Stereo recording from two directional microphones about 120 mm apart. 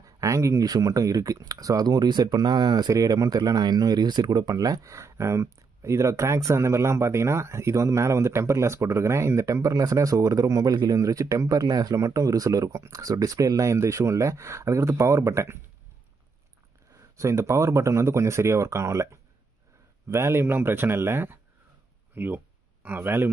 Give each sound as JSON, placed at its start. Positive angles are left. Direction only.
{"t": 0.0, "sound": "speech", "side_deg": -25}
{"t": 17.2, "sound": "speech", "side_deg": -25}
{"t": 20.1, "sound": "a man's voice", "side_deg": -20}